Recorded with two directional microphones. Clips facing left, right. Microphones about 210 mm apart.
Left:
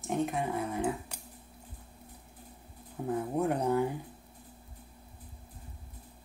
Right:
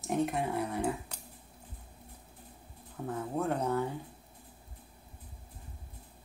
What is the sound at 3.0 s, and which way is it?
Speech, 15° left (ahead or behind).